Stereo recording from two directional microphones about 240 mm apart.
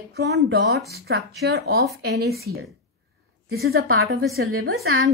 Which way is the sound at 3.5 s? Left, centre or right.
Right.